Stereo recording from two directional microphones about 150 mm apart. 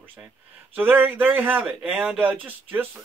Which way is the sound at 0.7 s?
15° right (ahead or behind).